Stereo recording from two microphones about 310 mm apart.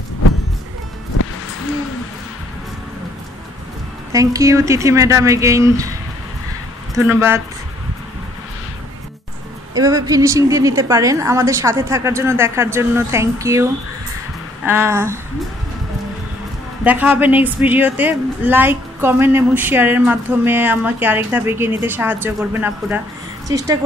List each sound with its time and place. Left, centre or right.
4.1 s a woman's voice: centre
7.0 s a woman's voice: centre
9.8 s a woman's voice: centre
16.8 s a woman's voice: centre